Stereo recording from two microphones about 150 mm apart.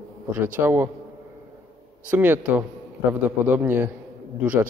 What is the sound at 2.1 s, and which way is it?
A man's voice, 15° right (ahead or behind).